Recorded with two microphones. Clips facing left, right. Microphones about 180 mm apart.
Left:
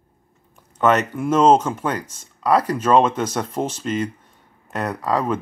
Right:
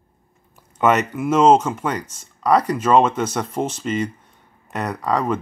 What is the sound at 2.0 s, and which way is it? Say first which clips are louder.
Speech: right 1 dB; 10° left (ahead or behind).